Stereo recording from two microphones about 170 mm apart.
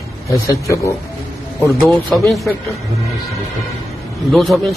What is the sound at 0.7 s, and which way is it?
Speech, 15° left (ahead or behind).